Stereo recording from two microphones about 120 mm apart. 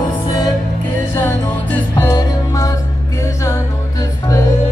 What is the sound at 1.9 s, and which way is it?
Music, 30° left (ahead or behind).